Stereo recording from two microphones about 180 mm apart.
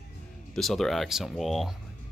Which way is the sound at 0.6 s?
Centre (ahead or behind).